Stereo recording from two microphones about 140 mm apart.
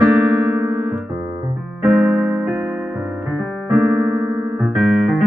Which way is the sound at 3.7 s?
10° right (ahead or behind).